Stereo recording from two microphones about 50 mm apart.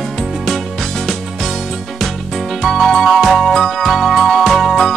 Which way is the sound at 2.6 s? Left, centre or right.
Centre.